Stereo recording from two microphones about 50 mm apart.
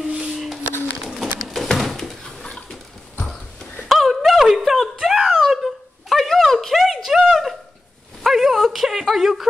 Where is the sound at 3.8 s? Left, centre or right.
Centre.